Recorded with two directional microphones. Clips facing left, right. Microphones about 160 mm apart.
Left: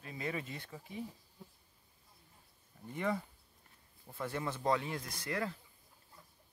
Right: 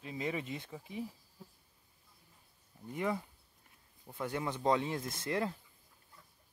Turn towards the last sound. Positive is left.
turn(degrees=-25)  # may be behind; listen again after turning